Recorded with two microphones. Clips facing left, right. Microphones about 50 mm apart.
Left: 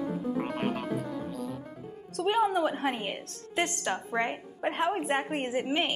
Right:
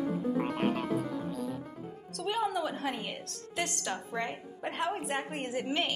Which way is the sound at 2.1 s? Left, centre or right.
Left.